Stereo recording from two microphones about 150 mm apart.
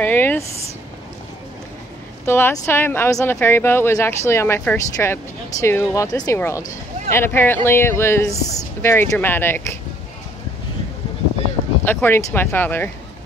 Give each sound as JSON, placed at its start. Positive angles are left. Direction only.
{"t": 0.0, "sound": "speech", "side_deg": 15}
{"t": 2.2, "sound": "speech", "side_deg": 15}
{"t": 11.8, "sound": "speech", "side_deg": 15}